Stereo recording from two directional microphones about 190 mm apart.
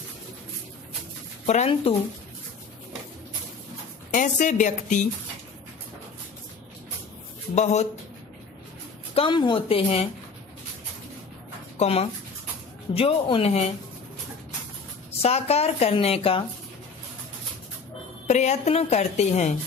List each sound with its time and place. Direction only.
1.4 s a woman's voice: 35° left (ahead or behind)
4.1 s a woman's voice: 40° left (ahead or behind)
7.5 s a woman's voice: 35° left (ahead or behind)
9.1 s a woman's voice: 25° left (ahead or behind)
11.8 s a woman's voice: 30° left (ahead or behind)
15.2 s a woman's voice: 35° left (ahead or behind)
18.2 s a woman's voice: 35° left (ahead or behind)